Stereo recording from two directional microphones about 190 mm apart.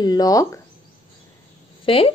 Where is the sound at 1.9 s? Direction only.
30° left (ahead or behind).